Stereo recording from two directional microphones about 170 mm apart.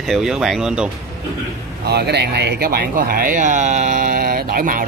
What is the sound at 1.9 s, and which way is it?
Speech, 75° right (ahead or behind).